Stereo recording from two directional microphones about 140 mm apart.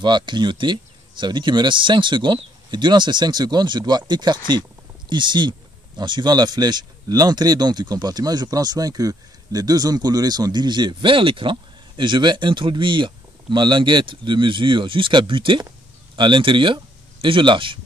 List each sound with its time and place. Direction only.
0.0 s speech: 35° right (ahead or behind)